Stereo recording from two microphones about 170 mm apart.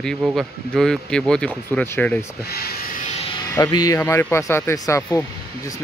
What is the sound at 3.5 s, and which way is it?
Speech, 20° left (ahead or behind).